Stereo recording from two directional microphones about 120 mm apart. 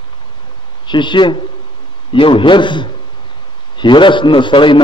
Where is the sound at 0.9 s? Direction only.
40° left (ahead or behind).